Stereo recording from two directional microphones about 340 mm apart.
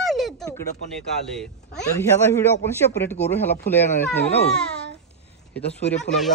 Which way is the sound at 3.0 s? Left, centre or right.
Centre.